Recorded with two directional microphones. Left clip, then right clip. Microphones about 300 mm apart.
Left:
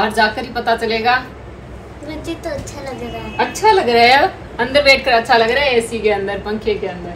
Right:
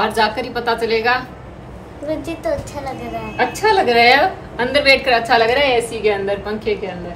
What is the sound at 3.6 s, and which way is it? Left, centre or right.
A woman's voice, centre.